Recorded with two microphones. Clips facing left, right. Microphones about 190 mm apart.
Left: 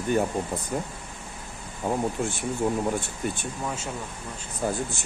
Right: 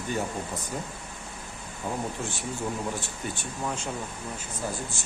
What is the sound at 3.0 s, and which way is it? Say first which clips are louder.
Speech: left 4 dB; 55° left (ahead or behind).